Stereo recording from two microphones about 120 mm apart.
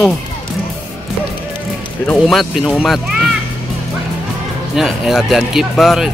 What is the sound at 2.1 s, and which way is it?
Speech, centre (ahead or behind).